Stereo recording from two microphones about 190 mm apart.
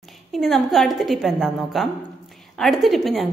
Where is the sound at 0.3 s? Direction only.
Centre (ahead or behind).